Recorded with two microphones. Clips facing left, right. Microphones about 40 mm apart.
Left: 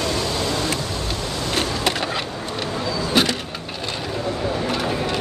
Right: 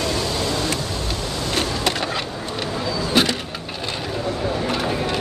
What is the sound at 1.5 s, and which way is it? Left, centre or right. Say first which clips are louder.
Skateboard: even; centre.